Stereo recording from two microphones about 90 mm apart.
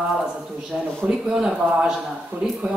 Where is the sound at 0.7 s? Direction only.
10° right (ahead or behind).